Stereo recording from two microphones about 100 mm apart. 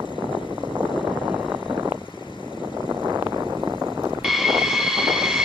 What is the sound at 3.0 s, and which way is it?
Vehicle, 30° right (ahead or behind).